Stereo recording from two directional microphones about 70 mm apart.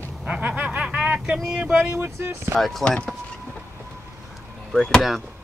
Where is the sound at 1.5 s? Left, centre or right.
Centre.